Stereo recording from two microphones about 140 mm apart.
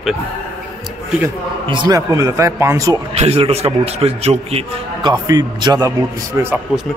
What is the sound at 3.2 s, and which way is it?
A man's voice, 45° right (ahead or behind).